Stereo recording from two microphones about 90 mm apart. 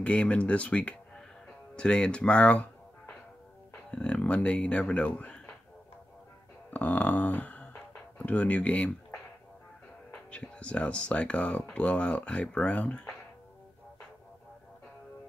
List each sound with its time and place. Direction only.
0.0 s speech: 15° left (ahead or behind)
6.7 s speech: 15° left (ahead or behind)
10.1 s speech: 10° left (ahead or behind)